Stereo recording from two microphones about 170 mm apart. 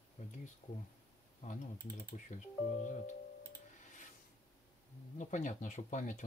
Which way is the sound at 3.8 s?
50° left (ahead or behind).